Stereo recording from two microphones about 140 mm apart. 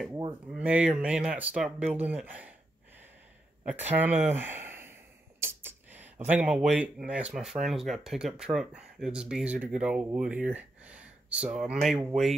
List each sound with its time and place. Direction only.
0.5 s speech: 10° right (ahead or behind)
3.6 s speech: 15° right (ahead or behind)
5.4 s a sound: 15° right (ahead or behind)
6.2 s speech: 10° right (ahead or behind)